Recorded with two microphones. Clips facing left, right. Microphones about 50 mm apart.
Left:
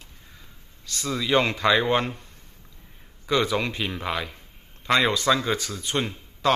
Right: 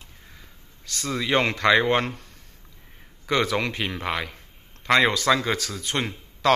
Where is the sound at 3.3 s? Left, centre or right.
Right.